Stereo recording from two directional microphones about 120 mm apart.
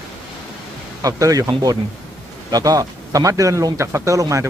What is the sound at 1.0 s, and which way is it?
Speech, 30° right (ahead or behind).